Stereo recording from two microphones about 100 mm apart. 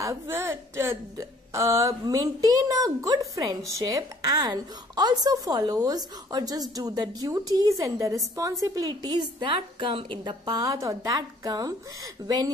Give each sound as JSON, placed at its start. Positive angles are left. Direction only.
{"t": 0.0, "sound": "a woman's voice", "side_deg": -30}